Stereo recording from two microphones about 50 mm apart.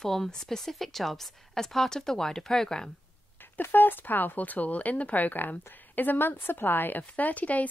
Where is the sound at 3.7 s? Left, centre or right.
Left.